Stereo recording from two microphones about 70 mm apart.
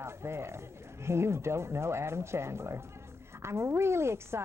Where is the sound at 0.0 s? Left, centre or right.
Right.